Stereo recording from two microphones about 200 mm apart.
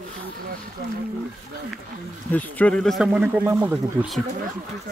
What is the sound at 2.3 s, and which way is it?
Speech, 5° left (ahead or behind).